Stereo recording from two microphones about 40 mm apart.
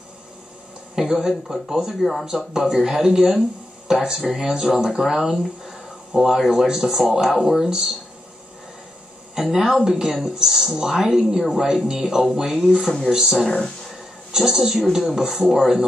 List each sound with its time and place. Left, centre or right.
0.9 s speech: centre
2.0 s speech: centre
2.2 s speech: centre
9.3 s speech: centre